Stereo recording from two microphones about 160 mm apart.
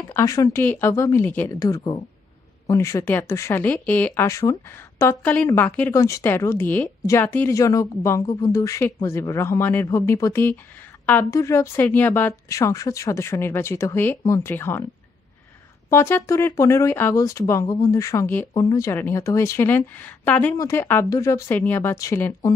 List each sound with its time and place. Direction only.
0.1 s speech: 20° left (ahead or behind)
15.9 s speech: 15° left (ahead or behind)